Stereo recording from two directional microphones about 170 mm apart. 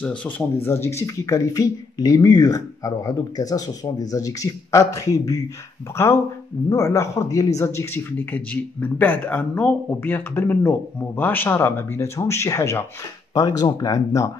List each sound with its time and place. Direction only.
0.0 s speech: 10° left (ahead or behind)